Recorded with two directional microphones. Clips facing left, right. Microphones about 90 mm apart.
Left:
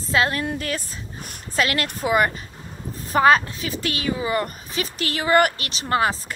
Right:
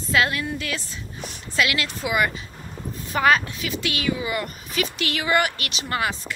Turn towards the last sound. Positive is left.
turn(degrees=35)  # may be behind; listen again after turning